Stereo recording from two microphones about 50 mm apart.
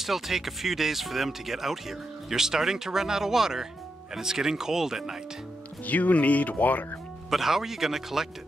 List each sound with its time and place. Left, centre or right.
0.0 s speech: centre
5.9 s speech: left
7.2 s speech: centre